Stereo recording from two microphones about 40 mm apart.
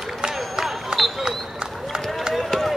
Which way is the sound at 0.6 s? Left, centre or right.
Centre.